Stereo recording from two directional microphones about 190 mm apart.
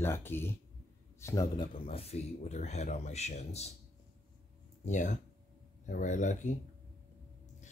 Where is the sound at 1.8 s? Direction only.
30° left (ahead or behind).